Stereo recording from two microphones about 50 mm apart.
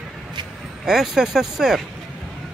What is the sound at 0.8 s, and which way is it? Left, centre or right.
Speech, centre.